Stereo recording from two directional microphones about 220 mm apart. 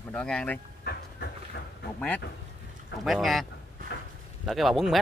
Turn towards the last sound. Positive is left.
turn(degrees=0)  # may be behind; listen again after turning